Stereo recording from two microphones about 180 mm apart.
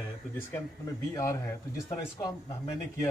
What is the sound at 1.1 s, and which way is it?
A man's voice, 15° left (ahead or behind).